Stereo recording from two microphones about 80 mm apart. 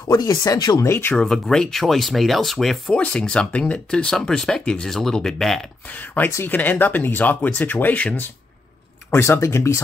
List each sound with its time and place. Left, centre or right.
0.1 s speech: left
0.8 s speech: left
1.1 s speech: centre
2.9 s speech: centre
5.9 s speech: left
9.1 s speech: left